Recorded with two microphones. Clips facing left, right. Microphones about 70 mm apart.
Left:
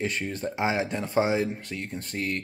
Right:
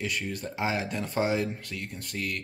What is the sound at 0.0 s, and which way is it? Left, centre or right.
Speech, left.